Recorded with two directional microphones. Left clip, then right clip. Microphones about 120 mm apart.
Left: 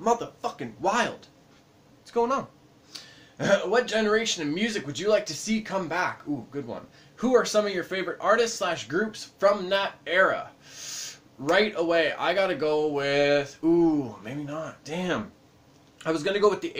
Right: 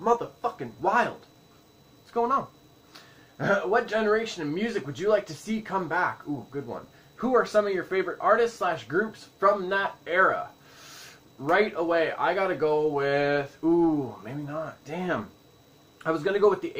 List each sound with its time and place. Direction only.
0.0 s speech: 15° left (ahead or behind)
0.6 s speech: 30° left (ahead or behind)
2.1 s speech: 30° left (ahead or behind)
11.4 s speech: 30° left (ahead or behind)
16.0 s speech: 20° left (ahead or behind)